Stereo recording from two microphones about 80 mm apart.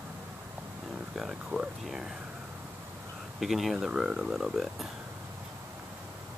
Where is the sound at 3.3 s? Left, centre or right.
Centre.